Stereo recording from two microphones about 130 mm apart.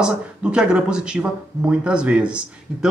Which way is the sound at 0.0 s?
5° right (ahead or behind).